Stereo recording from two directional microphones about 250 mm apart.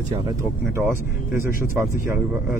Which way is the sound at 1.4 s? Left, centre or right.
Left.